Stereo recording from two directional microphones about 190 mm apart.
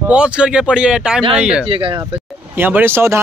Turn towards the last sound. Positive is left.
turn(degrees=-10)  # may be behind; listen again after turning